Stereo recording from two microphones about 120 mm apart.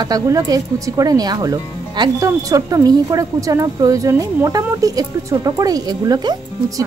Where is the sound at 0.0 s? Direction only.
30° right (ahead or behind).